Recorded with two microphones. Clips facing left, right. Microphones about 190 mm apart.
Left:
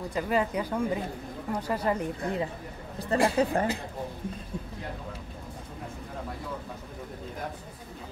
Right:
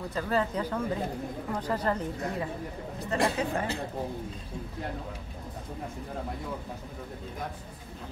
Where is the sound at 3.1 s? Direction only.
35° left (ahead or behind).